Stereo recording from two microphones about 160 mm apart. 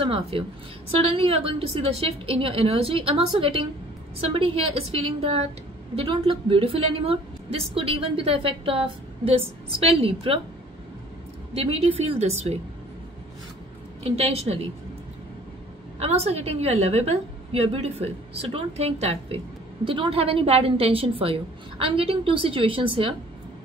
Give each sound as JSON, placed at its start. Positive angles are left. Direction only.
{"t": 0.0, "sound": "a woman's voice", "side_deg": -35}
{"t": 11.5, "sound": "a woman's voice", "side_deg": -40}
{"t": 14.0, "sound": "a woman's voice", "side_deg": -40}
{"t": 16.0, "sound": "a woman's voice", "side_deg": -40}